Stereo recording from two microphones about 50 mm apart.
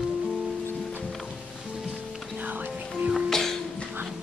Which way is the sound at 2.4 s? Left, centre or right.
Right.